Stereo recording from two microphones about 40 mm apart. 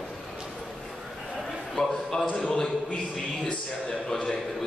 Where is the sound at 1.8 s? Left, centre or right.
Centre.